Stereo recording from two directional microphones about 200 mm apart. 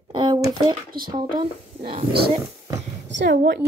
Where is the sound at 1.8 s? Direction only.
25° right (ahead or behind).